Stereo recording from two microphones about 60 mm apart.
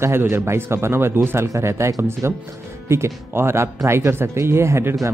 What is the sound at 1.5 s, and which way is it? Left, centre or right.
Speech, right.